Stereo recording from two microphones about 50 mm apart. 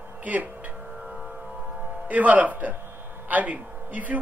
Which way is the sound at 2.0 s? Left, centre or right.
Right.